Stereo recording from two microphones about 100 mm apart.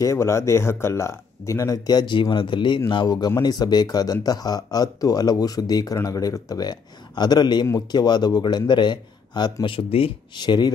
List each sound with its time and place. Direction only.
0.0 s a man's voice: 30° left (ahead or behind); by 9.8 s 45° left (ahead or behind)
9.8 s speech: 70° left (ahead or behind)
10.3 s a man's voice: 50° left (ahead or behind)